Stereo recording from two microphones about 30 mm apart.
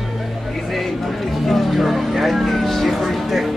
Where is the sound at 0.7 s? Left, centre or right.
Centre.